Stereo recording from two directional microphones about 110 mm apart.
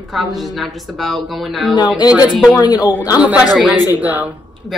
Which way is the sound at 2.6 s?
40° left (ahead or behind).